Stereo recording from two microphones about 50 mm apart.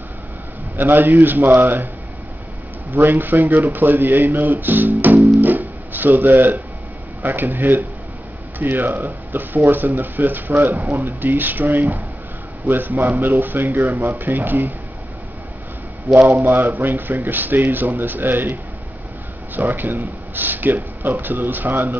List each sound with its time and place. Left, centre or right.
0.7 s speech: right
2.9 s speech: right
5.4 s music: right
7.2 s speech: right
16.1 s speech: right